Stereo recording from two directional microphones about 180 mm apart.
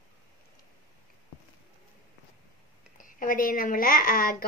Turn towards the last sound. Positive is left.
turn(degrees=55)  # may be behind; listen again after turning